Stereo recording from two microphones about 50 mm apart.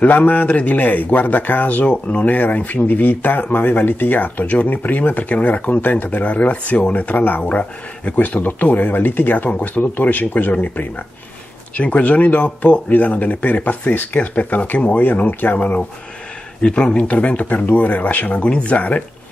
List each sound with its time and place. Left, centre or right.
0.0 s speech: left